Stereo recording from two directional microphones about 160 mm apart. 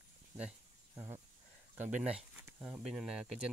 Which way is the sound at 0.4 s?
5° right (ahead or behind).